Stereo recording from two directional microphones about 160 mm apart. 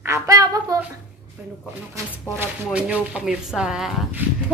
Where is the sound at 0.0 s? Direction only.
20° right (ahead or behind).